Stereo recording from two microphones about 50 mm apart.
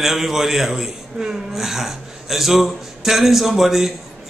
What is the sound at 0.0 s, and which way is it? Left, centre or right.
A man's voice, centre.